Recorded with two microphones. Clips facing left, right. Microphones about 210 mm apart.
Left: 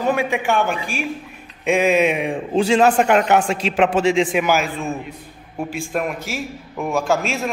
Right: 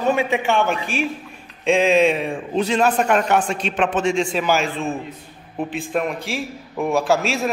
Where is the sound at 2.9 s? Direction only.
90° left.